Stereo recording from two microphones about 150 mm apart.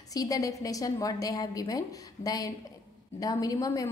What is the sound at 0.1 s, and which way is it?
A woman's voice, 25° left (ahead or behind).